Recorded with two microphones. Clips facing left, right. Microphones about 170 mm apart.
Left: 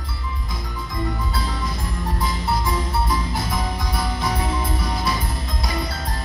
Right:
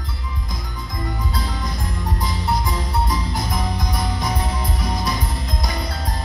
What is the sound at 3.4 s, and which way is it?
Music, 15° right (ahead or behind).